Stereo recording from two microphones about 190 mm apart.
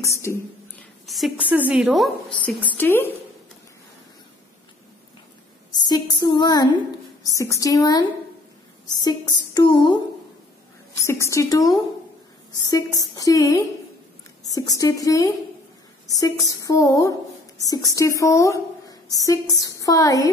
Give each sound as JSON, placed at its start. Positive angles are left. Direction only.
{"t": 0.0, "sound": "a sound", "side_deg": 15}
{"t": 1.0, "sound": "a woman's voice", "side_deg": 0}
{"t": 5.7, "sound": "a woman's voice", "side_deg": 20}
{"t": 11.1, "sound": "a woman's voice", "side_deg": 15}